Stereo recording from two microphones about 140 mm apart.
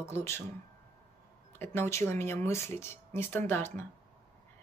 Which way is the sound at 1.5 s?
15° left (ahead or behind).